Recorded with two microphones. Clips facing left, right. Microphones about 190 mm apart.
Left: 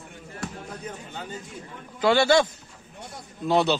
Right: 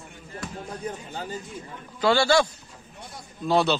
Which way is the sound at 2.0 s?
20° left (ahead or behind).